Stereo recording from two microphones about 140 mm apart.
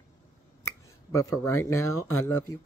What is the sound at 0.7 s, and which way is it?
Speech, 20° left (ahead or behind).